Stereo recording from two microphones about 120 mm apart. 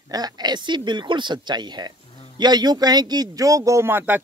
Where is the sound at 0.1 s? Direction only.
35° right (ahead or behind).